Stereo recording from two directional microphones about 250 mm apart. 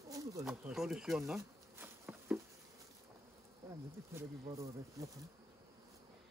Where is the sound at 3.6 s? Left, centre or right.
Centre.